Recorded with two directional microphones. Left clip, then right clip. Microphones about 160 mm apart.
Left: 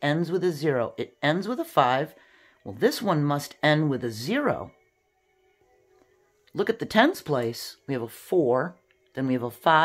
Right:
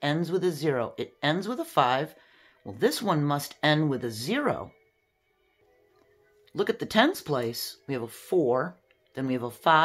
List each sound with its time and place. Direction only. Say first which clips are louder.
0.0 s speech: left 2 dB; 20° left (ahead or behind)
6.5 s speech: left 2 dB; 20° left (ahead or behind)